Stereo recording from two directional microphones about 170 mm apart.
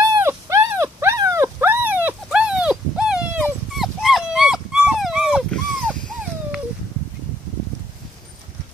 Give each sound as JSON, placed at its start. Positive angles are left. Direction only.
{"t": 0.0, "sound": "dog", "side_deg": -15}